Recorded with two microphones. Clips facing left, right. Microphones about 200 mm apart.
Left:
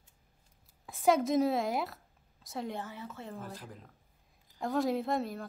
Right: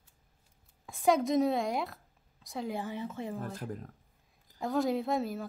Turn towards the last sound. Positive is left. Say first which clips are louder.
# right 1 dB
turn(degrees=0)  # may be behind; listen again after turning